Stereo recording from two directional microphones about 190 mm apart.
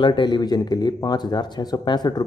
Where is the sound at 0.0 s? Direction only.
25° left (ahead or behind).